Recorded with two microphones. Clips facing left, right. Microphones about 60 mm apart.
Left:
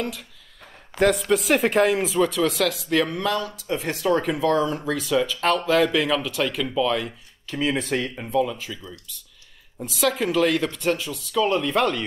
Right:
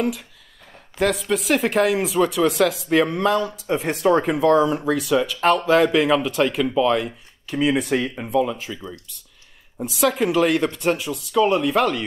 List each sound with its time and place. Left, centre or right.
0.9 s speech: centre
5.9 s speech: centre
9.8 s speech: centre